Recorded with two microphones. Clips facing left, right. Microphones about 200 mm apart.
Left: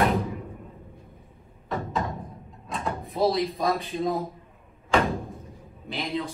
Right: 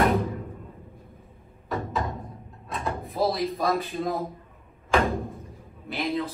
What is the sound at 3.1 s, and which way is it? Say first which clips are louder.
Speech: left 2 dB; centre (ahead or behind).